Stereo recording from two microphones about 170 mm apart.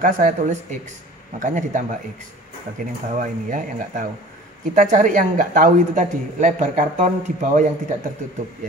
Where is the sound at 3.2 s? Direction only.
50° right (ahead or behind).